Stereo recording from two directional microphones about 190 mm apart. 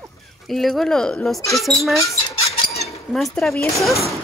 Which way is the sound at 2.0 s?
15° left (ahead or behind).